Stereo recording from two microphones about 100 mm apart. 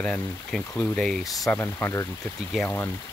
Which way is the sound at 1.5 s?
25° left (ahead or behind).